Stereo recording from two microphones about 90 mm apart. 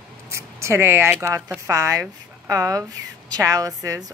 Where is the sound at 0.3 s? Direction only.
30° right (ahead or behind).